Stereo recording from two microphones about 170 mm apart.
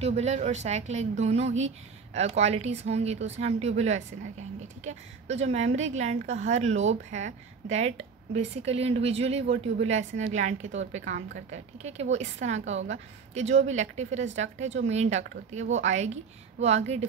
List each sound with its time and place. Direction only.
0.0 s a woman's voice: 40° right (ahead or behind)